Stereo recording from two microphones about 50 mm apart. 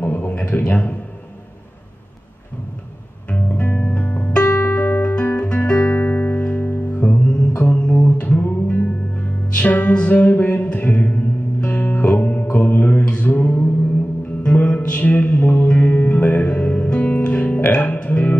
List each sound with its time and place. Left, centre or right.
0.0 s a sound: left
3.3 s music: left
15.7 s music: left
17.7 s music: left